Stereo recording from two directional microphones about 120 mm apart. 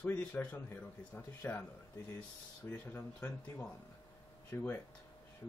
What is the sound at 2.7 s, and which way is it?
Speech, 15° left (ahead or behind).